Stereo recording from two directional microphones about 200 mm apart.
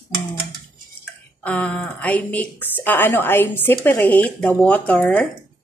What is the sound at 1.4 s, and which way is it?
A woman's voice, 5° left (ahead or behind).